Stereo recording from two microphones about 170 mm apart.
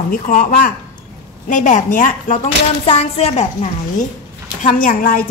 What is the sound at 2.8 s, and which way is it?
Speech, 40° left (ahead or behind).